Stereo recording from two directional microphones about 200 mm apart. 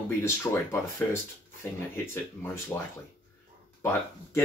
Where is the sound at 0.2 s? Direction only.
10° left (ahead or behind).